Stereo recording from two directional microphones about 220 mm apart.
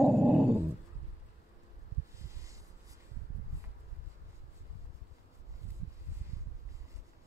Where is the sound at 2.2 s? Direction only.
15° right (ahead or behind).